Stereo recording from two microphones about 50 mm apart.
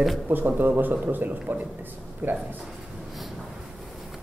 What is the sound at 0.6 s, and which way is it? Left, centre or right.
A man's voice, right.